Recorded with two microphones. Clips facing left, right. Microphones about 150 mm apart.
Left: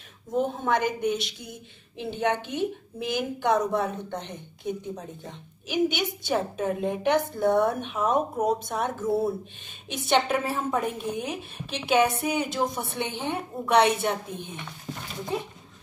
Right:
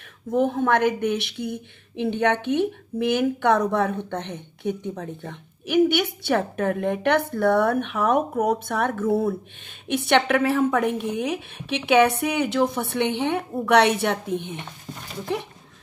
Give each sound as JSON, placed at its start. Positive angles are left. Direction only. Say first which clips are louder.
{"t": 0.3, "sound": "a woman's voice", "louder": "right 5 dB", "side_deg": -55}
{"t": 15.3, "sound": "speech", "louder": "right 3 dB", "side_deg": -70}